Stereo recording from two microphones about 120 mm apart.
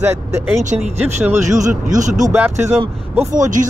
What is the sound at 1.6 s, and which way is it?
Speech, 90° right.